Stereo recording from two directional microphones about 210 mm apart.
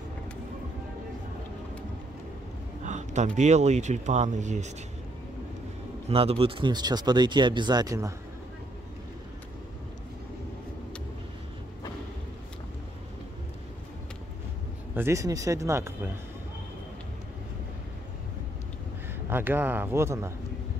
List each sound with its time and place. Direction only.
2.8 s a sound: 35° right (ahead or behind)
3.3 s speech: 35° right (ahead or behind)
6.0 s speech: 30° right (ahead or behind)
15.0 s speech: 15° right (ahead or behind)
19.2 s speech: 10° right (ahead or behind)